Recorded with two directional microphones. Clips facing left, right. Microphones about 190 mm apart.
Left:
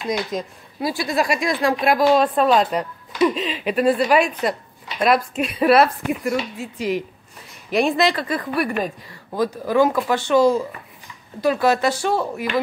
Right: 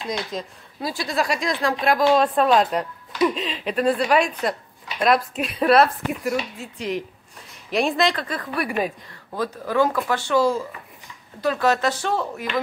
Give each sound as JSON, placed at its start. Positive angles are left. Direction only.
{"t": 0.1, "sound": "speech", "side_deg": 10}
{"t": 8.5, "sound": "speech", "side_deg": -5}
{"t": 9.1, "sound": "speech", "side_deg": 15}